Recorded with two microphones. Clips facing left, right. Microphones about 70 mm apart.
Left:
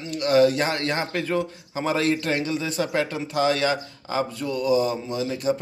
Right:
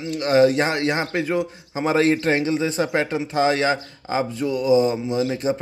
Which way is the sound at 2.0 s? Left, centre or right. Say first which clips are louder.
Right 6 dB; right.